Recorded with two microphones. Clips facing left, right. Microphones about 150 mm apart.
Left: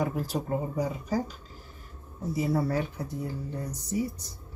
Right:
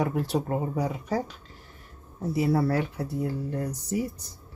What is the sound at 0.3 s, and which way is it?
Speech, 65° right (ahead or behind).